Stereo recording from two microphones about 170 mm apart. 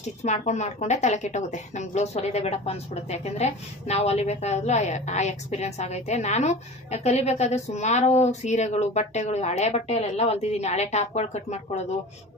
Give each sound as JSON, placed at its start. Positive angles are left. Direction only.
{"t": 0.2, "sound": "a woman's voice", "side_deg": 40}